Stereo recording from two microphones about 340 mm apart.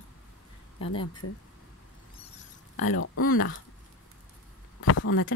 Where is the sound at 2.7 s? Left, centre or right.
Left.